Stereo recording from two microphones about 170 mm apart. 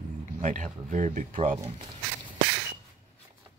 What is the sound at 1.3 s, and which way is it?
Speech, 35° right (ahead or behind).